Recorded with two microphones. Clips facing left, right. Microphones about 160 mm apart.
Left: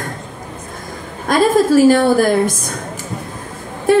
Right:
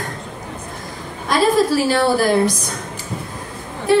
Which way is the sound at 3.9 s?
50° left (ahead or behind).